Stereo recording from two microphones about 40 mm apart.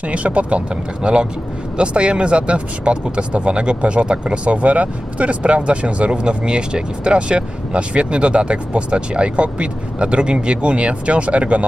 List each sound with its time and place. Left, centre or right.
0.1 s speech: right